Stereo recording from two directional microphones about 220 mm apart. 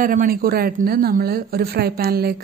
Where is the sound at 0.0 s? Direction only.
40° right (ahead or behind).